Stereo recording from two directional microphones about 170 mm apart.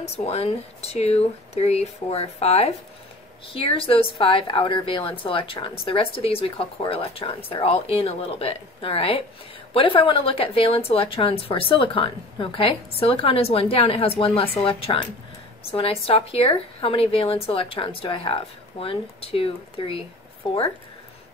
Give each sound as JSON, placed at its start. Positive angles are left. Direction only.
{"t": 0.2, "sound": "a woman's voice", "side_deg": 35}